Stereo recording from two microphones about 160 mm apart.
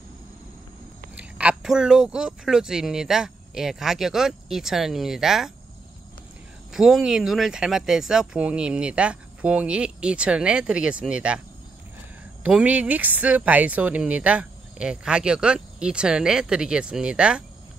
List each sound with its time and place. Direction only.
1.1 s speech: 5° right (ahead or behind)
6.7 s speech: 5° right (ahead or behind)
12.4 s speech: 10° right (ahead or behind)